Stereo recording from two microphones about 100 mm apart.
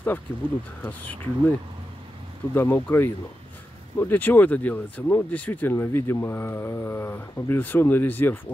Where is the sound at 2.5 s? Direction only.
20° left (ahead or behind).